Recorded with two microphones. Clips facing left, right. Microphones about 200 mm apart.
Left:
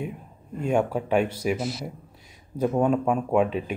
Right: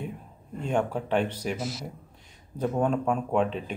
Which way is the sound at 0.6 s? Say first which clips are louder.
Left 4 dB; 10° left (ahead or behind).